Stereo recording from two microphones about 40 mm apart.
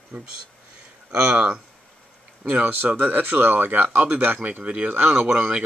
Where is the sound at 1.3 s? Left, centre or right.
Right.